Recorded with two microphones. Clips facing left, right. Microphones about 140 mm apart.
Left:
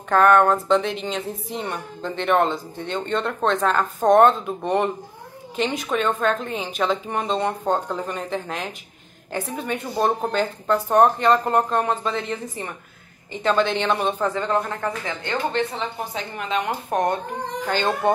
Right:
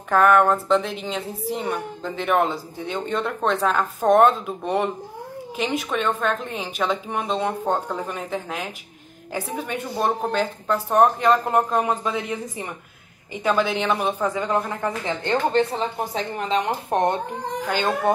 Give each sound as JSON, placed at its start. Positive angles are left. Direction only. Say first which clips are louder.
{"t": 0.1, "sound": "a woman's voice", "louder": "left 1 dB", "side_deg": -5}
{"t": 15.0, "sound": "speech", "louder": "right 3 dB", "side_deg": -30}
{"t": 17.6, "sound": "a woman's voice", "louder": "left 1 dB", "side_deg": -5}